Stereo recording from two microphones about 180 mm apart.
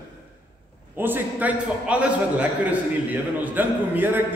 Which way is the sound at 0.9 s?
10° right (ahead or behind).